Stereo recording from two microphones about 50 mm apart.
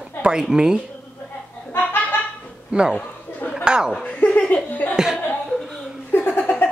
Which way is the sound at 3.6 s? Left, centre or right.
Centre.